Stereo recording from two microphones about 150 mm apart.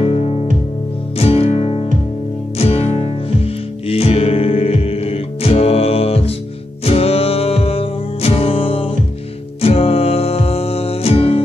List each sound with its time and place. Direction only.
0.0 s music: 40° left (ahead or behind)